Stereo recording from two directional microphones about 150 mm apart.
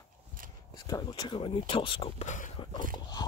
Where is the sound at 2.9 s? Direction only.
30° left (ahead or behind).